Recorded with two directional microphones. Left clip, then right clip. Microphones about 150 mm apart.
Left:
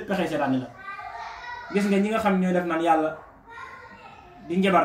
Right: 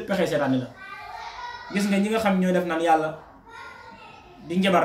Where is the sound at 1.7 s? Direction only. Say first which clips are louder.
Left 1 dB; 25° right (ahead or behind).